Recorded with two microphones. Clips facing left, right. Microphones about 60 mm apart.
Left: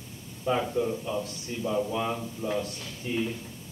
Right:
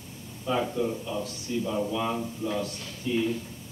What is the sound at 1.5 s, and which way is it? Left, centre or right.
A man's voice, left.